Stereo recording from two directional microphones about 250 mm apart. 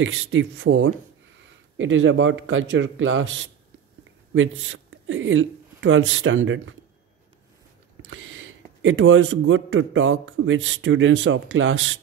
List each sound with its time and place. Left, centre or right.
0.0 s a man's voice: right
8.1 s a man's voice: right